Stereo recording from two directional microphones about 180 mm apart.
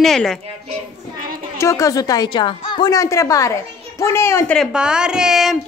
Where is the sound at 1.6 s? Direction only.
15° left (ahead or behind).